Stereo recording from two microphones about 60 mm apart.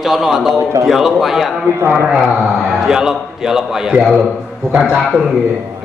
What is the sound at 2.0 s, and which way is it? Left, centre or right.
A man's voice, centre.